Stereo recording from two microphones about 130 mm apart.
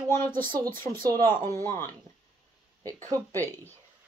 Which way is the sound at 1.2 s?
20° left (ahead or behind).